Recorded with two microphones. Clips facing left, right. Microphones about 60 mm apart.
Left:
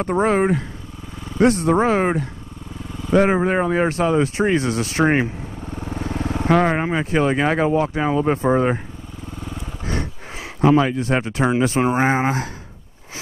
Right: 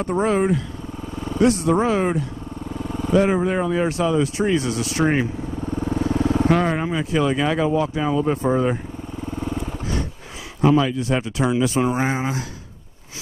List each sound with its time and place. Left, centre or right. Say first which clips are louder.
0.0 s speech: left 2 dB; left
2.8 s vehicle: right 5 dB; right
3.1 s speech: left 2 dB; left
5.6 s vehicle: right 7 dB; right
5.9 s speech: right 4 dB; left
9.4 s wild animals: right 6 dB; right
10.6 s speech: left 2 dB; left